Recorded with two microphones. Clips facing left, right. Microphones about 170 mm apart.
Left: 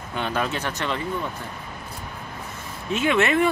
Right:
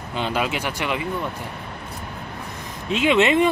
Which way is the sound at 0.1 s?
15° right (ahead or behind).